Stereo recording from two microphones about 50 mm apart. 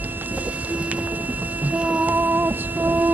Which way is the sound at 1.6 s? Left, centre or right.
Right.